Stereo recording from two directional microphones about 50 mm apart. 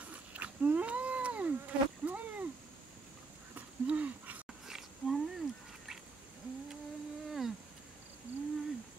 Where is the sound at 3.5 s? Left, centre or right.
Right.